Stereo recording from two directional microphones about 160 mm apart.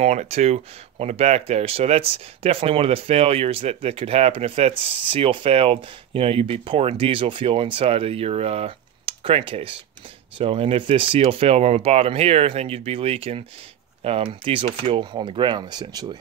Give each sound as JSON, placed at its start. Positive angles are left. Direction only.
{"t": 0.0, "sound": "speech", "side_deg": -45}